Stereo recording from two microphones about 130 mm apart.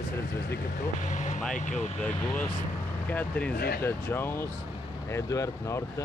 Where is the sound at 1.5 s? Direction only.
75° left (ahead or behind).